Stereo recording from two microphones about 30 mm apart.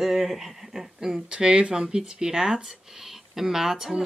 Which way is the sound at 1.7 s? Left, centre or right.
Right.